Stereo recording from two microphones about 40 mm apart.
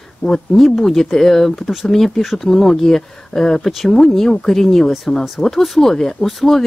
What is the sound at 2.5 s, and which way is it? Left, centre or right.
Speech, centre.